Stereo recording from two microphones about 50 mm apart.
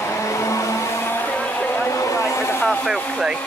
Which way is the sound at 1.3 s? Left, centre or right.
Left.